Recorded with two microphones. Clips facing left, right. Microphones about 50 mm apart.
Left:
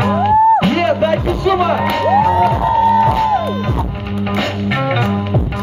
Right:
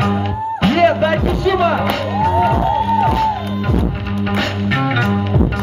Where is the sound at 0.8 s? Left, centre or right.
Centre.